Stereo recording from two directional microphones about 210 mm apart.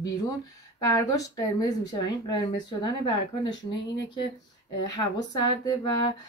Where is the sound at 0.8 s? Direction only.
15° left (ahead or behind).